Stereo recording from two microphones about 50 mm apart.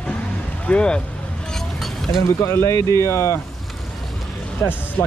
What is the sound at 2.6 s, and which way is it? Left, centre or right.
Speech, left.